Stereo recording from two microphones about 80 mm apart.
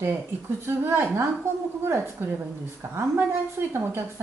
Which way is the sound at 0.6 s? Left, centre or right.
Right.